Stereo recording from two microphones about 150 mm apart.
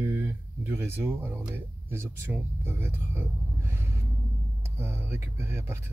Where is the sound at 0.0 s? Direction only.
15° right (ahead or behind).